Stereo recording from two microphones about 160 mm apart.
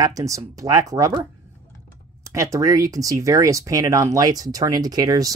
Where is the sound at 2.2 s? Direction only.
20° right (ahead or behind).